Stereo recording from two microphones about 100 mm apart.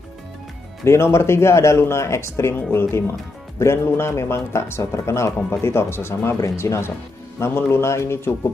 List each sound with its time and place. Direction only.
0.8 s speech: 25° left (ahead or behind)